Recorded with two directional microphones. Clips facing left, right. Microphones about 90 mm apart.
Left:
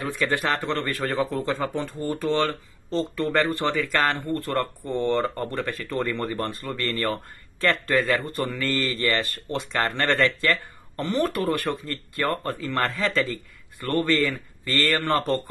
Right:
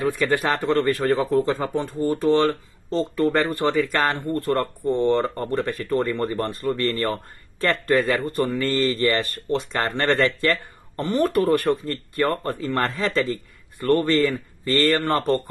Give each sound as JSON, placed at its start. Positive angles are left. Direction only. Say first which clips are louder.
{"t": 0.2, "sound": "speech", "louder": "right 3 dB", "side_deg": -25}